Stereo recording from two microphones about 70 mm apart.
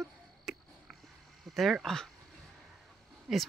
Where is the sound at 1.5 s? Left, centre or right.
Centre.